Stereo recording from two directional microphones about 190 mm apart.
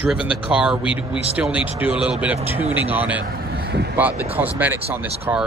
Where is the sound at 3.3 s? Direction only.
55° right (ahead or behind).